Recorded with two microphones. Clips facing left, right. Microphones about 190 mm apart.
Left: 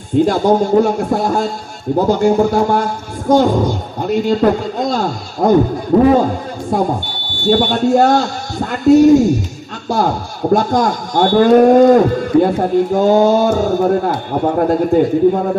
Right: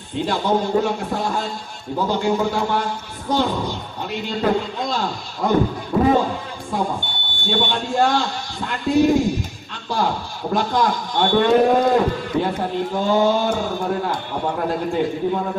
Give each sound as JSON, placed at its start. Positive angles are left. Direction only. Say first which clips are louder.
{"t": 0.1, "sound": "a man's voice", "louder": "left 8 dB", "side_deg": 45}